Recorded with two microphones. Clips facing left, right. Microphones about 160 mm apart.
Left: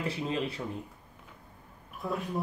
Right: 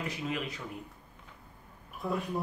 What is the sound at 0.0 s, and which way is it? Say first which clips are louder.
Speech: left 3 dB; 30° left (ahead or behind).